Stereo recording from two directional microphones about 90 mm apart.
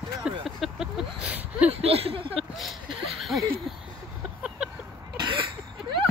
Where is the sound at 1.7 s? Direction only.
90° right.